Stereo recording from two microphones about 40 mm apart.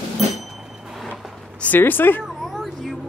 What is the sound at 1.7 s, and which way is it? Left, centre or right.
Speech, left.